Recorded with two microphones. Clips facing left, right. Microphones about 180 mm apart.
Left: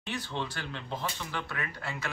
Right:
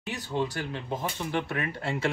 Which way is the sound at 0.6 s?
15° right (ahead or behind).